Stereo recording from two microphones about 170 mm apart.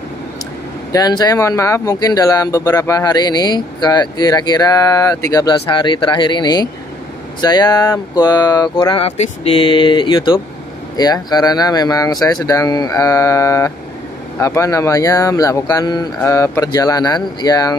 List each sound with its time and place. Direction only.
0.9 s speech: 20° left (ahead or behind)